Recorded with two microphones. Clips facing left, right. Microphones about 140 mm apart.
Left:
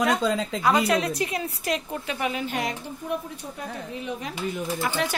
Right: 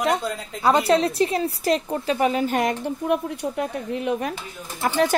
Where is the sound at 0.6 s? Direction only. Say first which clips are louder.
Right 4 dB; 30° right (ahead or behind); by 2.8 s 50° right (ahead or behind).